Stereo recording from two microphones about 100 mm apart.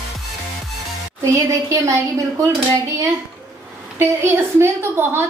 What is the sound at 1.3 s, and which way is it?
A woman's voice, 30° right (ahead or behind).